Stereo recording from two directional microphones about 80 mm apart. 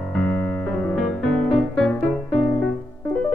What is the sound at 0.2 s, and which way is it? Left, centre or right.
Music, left.